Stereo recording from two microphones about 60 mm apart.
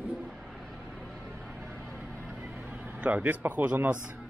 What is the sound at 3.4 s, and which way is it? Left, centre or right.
Speech, right.